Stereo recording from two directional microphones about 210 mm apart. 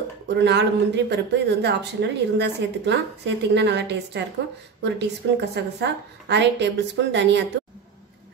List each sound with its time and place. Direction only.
0.4 s speech: 55° right (ahead or behind)